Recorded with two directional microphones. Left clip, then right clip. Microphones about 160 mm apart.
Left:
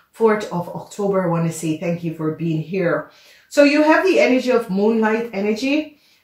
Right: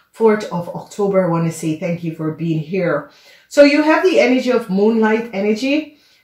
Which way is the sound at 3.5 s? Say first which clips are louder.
Right 3 dB; 40° right (ahead or behind).